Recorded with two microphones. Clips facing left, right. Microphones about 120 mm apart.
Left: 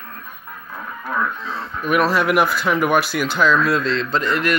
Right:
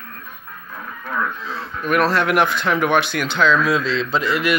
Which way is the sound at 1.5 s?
Centre (ahead or behind).